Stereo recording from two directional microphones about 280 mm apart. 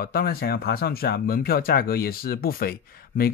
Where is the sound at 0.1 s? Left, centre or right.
Left.